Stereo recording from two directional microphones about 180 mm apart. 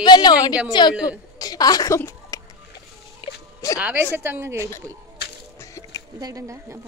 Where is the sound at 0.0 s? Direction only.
25° left (ahead or behind).